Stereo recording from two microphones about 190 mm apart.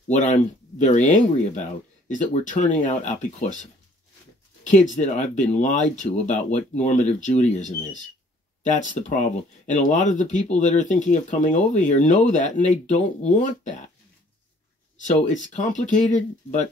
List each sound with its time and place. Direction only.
0.1 s speech: 40° left (ahead or behind)
4.6 s speech: 40° left (ahead or behind)
15.5 s speech: 40° left (ahead or behind)